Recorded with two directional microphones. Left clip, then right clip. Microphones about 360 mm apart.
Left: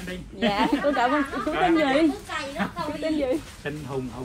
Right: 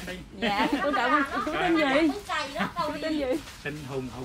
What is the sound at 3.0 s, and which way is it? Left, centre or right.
Speech, centre.